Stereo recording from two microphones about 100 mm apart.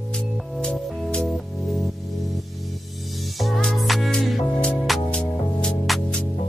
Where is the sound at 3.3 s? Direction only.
Centre (ahead or behind).